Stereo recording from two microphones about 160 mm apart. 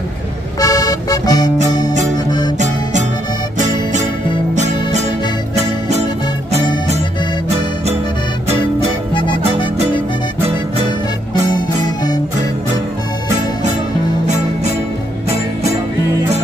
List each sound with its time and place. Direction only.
0.6 s music: 20° left (ahead or behind)
2.6 s music: 50° right (ahead or behind)
11.8 s music: 25° left (ahead or behind)